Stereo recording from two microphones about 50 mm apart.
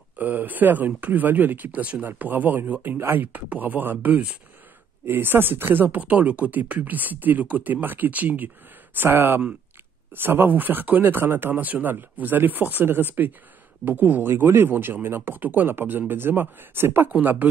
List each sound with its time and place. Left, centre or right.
0.2 s speech: right
3.0 s speech: right
3.3 s speech: right
8.9 s speech: right
14.3 s speech: right